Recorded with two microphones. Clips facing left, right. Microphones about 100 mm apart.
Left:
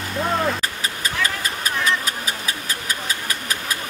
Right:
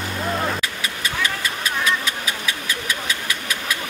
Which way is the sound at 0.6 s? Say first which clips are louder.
Left 1 dB; 40° left (ahead or behind).